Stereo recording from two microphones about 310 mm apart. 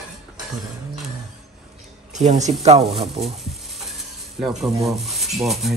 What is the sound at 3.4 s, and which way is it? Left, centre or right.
Sizzle, centre.